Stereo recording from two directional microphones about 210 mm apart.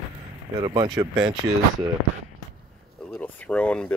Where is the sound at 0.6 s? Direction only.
20° right (ahead or behind).